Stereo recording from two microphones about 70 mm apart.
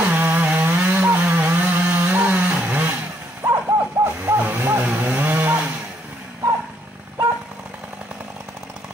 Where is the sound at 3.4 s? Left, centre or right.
Right.